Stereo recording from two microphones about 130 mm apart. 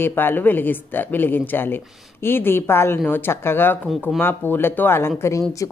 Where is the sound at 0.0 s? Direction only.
15° left (ahead or behind).